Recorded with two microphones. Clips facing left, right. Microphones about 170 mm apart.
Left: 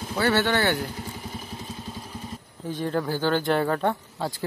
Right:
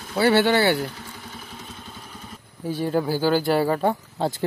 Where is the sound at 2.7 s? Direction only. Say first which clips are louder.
Right 4 dB; 10° right (ahead or behind).